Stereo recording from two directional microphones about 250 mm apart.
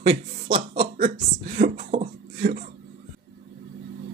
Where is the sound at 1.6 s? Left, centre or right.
Right.